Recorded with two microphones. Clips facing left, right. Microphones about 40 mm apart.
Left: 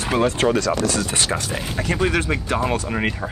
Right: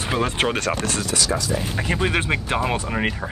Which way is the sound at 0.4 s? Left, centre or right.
Right.